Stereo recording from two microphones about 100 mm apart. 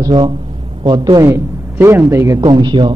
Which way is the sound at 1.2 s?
25° right (ahead or behind).